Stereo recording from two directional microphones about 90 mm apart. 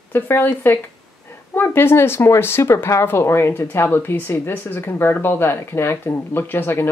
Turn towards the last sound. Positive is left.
turn(degrees=25)  # may be behind; listen again after turning